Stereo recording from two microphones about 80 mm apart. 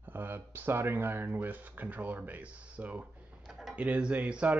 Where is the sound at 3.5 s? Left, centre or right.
Centre.